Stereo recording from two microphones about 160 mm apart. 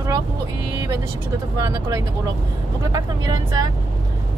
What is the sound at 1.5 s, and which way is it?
Speech, 20° right (ahead or behind).